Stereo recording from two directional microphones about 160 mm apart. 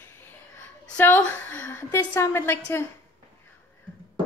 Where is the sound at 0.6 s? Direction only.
10° left (ahead or behind).